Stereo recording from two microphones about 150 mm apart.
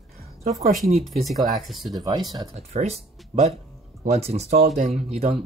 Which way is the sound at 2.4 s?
45° right (ahead or behind).